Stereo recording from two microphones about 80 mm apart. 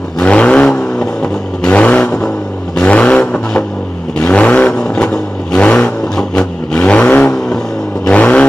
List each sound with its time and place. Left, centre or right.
0.2 s vehicle: centre